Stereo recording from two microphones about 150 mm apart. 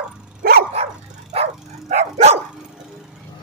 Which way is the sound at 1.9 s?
45° right (ahead or behind).